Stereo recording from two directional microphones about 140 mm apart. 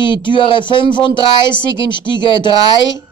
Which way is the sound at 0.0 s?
35° left (ahead or behind).